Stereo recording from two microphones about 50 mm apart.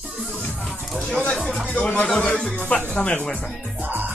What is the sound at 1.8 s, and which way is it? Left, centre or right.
Speech, left.